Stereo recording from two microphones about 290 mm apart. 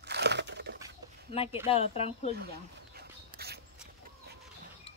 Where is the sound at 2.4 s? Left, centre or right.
Right.